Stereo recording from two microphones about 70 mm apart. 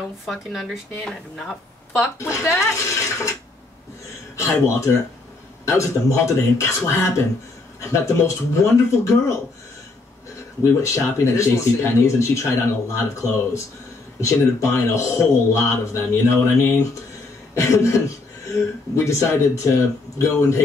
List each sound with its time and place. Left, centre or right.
0.3 s speech: centre
2.1 s speech: left
4.4 s speech: left
10.8 s speech: left
17.6 s speech: left